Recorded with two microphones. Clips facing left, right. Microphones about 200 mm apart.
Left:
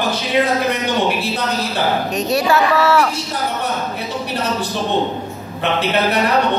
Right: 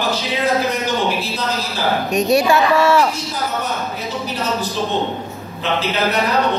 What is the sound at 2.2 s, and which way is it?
Speech, 10° right (ahead or behind).